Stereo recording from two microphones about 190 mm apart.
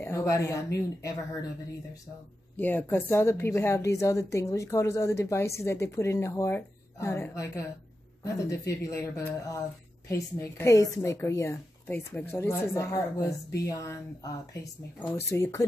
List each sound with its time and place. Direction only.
0.0 s a woman's voice: 15° left (ahead or behind)
2.5 s a woman's voice: 10° left (ahead or behind)
14.6 s a woman's voice: 15° left (ahead or behind)